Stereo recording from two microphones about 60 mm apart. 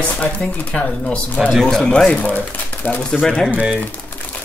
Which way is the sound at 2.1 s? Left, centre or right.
Left.